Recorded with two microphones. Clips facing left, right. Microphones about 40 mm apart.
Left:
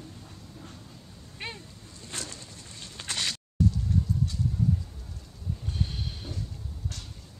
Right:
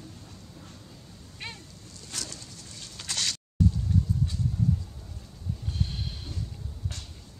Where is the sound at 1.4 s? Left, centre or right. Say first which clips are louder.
Left 2 dB; centre.